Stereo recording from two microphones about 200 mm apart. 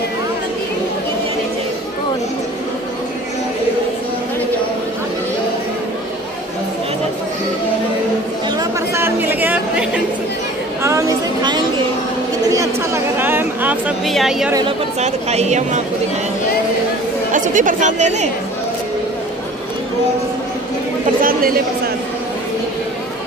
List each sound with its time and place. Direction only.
8.5 s chatter: 10° right (ahead or behind)
12.5 s a sound: 10° right (ahead or behind)
15.0 s speech: 35° right (ahead or behind)
17.3 s speech: 40° right (ahead or behind)